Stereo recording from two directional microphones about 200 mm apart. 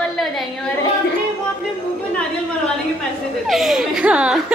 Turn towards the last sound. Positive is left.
turn(degrees=-5)  # may be behind; listen again after turning